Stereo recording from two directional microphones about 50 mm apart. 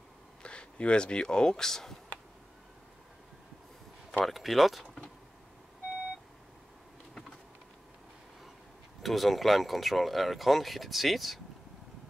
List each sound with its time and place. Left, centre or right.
0.4 s speech: left
4.2 s speech: centre
9.0 s speech: centre